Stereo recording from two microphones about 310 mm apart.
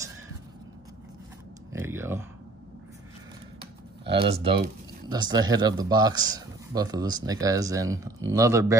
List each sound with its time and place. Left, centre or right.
1.7 s speech: centre
4.1 s a man's voice: centre